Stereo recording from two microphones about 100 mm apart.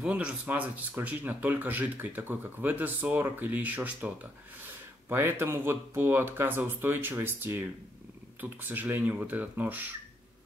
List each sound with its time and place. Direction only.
0.0 s speech: 10° right (ahead or behind)